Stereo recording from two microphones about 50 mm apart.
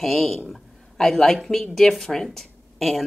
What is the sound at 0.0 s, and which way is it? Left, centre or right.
Speech, centre.